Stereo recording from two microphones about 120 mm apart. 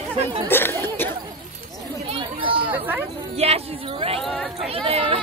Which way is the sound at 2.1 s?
45° right (ahead or behind).